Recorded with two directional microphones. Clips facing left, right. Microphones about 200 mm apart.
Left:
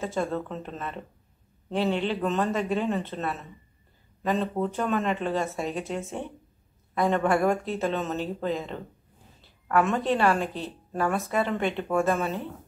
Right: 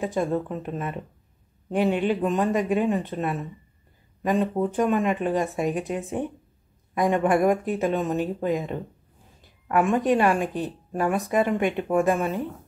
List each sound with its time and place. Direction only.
0.0 s a woman's voice: 15° right (ahead or behind)